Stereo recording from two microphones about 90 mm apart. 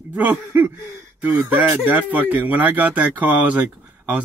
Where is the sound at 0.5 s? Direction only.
20° right (ahead or behind).